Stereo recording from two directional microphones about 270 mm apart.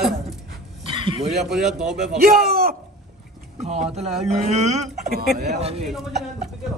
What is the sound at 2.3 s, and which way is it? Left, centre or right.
Speech, right.